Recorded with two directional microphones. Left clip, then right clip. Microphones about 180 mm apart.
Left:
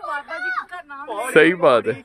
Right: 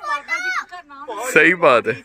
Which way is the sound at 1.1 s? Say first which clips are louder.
Right 1 dB; 5° left (ahead or behind).